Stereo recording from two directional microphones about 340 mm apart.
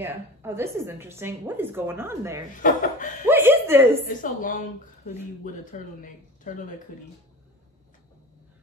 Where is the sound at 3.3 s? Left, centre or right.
Centre.